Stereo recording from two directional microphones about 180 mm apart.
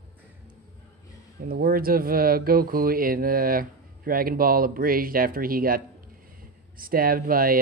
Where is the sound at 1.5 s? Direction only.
55° right (ahead or behind).